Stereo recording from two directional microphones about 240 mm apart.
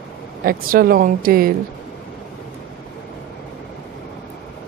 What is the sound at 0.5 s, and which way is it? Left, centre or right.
Speech, right.